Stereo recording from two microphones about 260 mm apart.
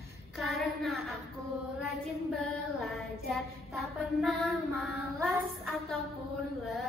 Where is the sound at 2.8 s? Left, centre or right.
Centre.